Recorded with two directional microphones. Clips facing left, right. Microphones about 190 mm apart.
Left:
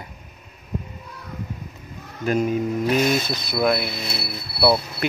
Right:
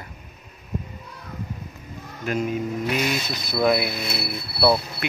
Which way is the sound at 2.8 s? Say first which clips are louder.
Left 6 dB; 40° left (ahead or behind).